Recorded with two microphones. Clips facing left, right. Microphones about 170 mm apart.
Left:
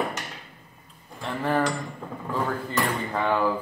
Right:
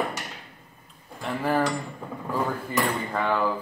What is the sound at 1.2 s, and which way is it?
Cutlery, 5° right (ahead or behind).